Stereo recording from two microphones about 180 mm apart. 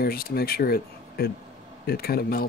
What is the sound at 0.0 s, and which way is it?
Speech, 60° left (ahead or behind).